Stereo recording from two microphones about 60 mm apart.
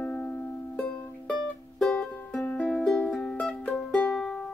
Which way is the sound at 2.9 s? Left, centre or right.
Centre.